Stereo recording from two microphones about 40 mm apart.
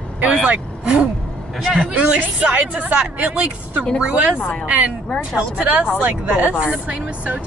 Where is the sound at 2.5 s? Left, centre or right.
Right.